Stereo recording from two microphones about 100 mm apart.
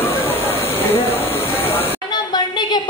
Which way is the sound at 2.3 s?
45° left (ahead or behind).